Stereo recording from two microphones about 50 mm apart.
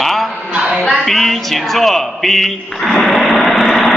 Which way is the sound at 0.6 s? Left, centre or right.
Centre.